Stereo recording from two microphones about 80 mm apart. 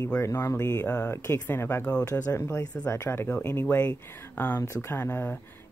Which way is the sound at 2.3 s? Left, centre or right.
Left.